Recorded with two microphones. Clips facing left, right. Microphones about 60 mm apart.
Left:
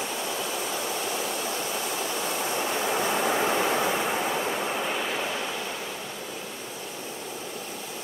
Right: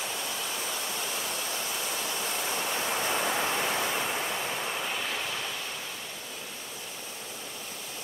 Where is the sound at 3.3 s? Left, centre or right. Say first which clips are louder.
Left 5 dB; centre.